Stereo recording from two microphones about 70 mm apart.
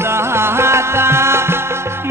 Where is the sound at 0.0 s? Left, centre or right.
Right.